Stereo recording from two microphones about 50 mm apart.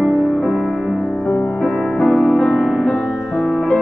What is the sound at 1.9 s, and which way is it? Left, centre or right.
Music, centre.